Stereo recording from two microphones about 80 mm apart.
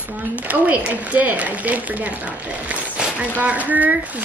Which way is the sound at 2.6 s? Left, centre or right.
Centre.